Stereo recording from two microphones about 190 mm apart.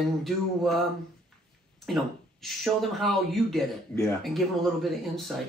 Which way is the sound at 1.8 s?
Centre (ahead or behind).